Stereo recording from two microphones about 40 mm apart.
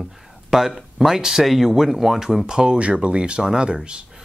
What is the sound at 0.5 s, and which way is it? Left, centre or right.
Speech, centre.